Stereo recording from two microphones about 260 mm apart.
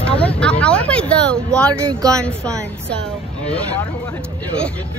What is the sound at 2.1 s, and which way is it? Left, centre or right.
Speech, centre.